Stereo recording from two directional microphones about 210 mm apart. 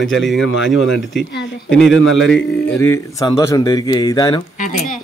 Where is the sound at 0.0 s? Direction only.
Centre (ahead or behind).